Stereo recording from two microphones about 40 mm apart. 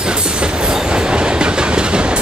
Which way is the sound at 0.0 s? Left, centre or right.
Right.